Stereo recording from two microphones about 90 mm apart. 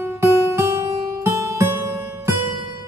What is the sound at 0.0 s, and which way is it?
Music, 30° right (ahead or behind).